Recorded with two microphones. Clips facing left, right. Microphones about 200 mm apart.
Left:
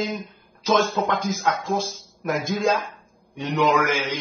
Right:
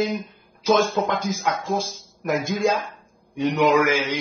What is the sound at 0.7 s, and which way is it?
A man's voice, 10° right (ahead or behind).